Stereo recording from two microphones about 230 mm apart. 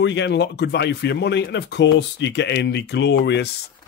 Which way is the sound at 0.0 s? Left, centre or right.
Left.